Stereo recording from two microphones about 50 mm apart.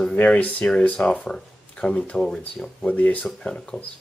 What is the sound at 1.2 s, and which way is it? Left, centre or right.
Speech, centre.